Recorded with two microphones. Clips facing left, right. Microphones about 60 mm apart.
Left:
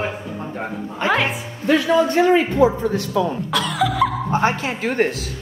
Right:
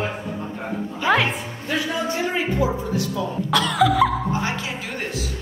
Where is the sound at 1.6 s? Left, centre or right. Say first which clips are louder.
Left 9 dB; left.